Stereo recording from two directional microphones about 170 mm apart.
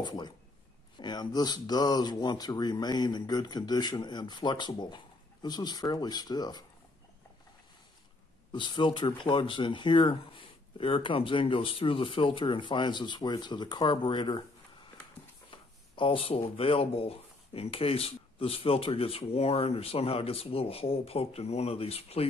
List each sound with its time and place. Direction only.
0.0 s speech: 25° left (ahead or behind)
8.5 s speech: 30° left (ahead or behind)
15.5 s speech: 30° left (ahead or behind)